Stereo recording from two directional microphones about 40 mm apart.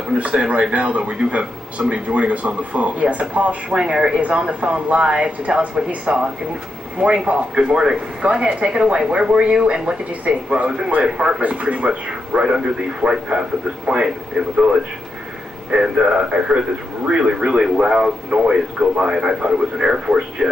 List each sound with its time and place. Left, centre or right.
0.3 s speech: right
3.8 s a man's voice: right
7.2 s a man's voice: right
11.6 s speech: right
12.1 s a man's voice: right
14.3 s speech: centre
15.7 s a man's voice: right